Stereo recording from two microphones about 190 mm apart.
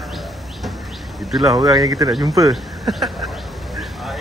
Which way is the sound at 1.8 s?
20° right (ahead or behind).